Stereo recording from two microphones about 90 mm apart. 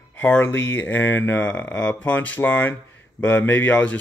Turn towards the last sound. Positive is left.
turn(degrees=20)  # may be behind; listen again after turning